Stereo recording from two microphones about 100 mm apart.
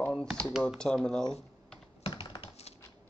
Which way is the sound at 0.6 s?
10° left (ahead or behind).